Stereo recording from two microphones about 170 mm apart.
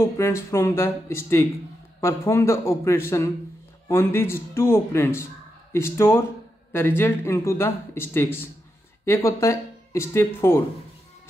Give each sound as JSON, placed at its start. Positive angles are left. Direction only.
{"t": 0.0, "sound": "a man's voice", "side_deg": 15}